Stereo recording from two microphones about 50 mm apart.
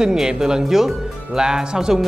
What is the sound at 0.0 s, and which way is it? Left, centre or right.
Speech, centre.